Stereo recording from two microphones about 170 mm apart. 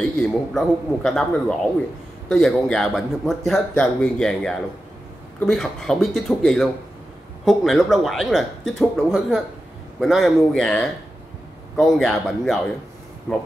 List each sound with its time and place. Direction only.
0.2 s a man's voice: centre (ahead or behind)